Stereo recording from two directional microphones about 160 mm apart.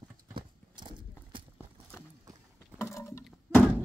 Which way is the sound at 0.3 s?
30° right (ahead or behind).